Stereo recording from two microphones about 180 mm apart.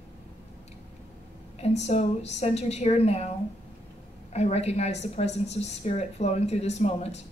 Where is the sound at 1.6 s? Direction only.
40° left (ahead or behind).